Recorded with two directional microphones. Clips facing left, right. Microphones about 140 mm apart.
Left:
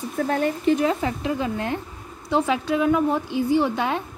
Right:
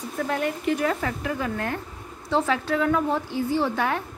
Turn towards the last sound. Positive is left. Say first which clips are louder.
# left 3 dB
turn(degrees=20)  # may be behind; listen again after turning